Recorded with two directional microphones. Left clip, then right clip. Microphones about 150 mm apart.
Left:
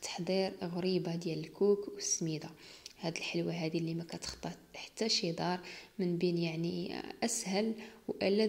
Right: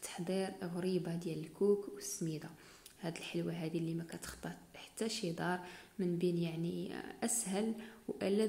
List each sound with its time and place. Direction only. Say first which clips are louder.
0.0 s speech: left 5 dB; 20° left (ahead or behind)